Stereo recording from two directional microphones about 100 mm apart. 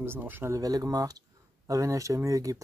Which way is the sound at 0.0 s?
20° right (ahead or behind).